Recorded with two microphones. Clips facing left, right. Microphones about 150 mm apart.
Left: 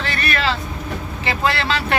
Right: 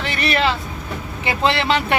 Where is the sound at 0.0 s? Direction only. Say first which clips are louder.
Right 3 dB; 20° right (ahead or behind).